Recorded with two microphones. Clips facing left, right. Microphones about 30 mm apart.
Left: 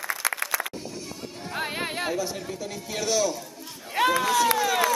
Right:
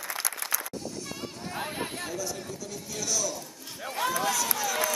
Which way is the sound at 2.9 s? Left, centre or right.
Left.